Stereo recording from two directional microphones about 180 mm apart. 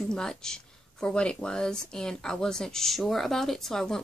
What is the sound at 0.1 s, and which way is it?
Speech, 5° left (ahead or behind).